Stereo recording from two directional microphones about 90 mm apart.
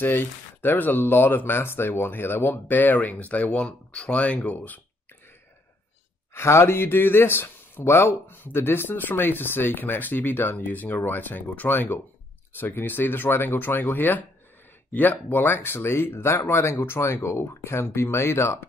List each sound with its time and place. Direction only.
0.0 s speech: 20° left (ahead or behind)
6.3 s speech: 30° left (ahead or behind)